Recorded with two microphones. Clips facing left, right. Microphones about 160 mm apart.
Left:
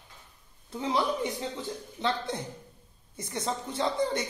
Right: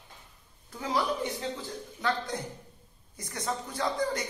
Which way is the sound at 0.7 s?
25° left (ahead or behind).